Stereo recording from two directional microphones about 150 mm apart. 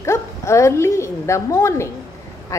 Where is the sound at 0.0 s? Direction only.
20° left (ahead or behind).